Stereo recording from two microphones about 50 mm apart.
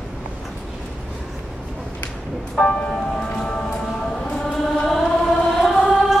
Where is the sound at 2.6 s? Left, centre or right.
Centre.